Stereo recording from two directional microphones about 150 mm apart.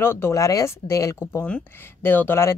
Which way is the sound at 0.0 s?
15° left (ahead or behind).